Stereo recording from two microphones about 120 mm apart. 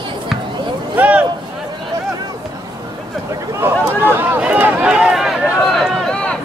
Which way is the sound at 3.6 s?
20° right (ahead or behind).